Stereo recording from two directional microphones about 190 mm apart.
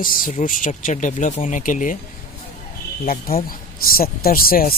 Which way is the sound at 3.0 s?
50° left (ahead or behind).